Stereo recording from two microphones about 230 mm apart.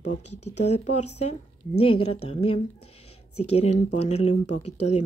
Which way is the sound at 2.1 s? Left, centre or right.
Left.